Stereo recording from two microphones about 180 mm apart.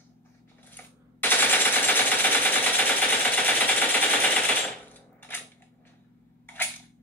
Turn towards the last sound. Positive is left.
turn(degrees=10)  # may be behind; listen again after turning